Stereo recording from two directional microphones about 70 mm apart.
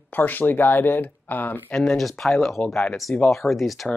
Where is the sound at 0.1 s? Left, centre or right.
Left.